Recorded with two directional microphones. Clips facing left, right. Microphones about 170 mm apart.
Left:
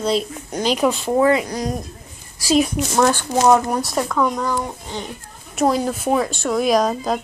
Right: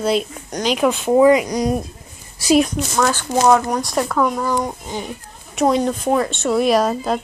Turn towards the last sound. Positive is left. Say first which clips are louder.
# right 1 dB
turn(degrees=0)  # may be behind; listen again after turning